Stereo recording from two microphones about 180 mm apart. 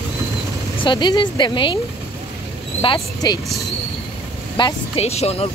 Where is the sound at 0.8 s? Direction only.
25° left (ahead or behind).